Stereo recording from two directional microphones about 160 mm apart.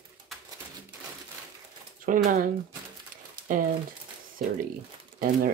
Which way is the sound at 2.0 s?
55° right (ahead or behind).